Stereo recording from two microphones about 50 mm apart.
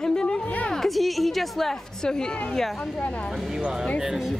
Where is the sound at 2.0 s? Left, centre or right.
Centre.